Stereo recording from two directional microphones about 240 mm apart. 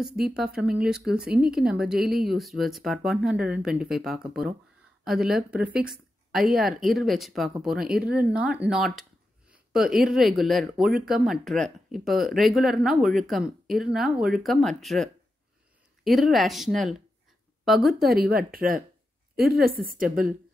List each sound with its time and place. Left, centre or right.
0.0 s speech: centre
18.0 s a woman's voice: right